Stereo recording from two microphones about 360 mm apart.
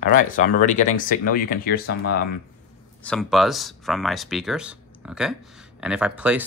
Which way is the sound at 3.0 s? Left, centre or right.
Centre.